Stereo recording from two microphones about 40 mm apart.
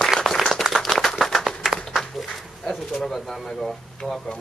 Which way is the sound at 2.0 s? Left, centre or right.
Centre.